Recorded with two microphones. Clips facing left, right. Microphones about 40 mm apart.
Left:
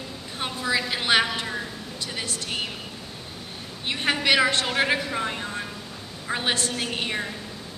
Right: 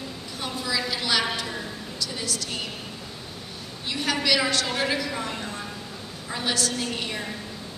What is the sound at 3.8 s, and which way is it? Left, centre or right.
A woman's voice, left.